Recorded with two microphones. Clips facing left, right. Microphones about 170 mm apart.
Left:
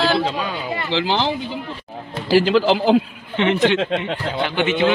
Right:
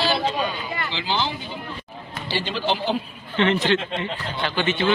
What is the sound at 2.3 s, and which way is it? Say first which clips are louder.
Speech: left 10 dB; 90° left.